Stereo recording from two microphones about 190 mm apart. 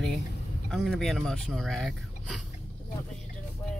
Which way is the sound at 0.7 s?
Centre (ahead or behind).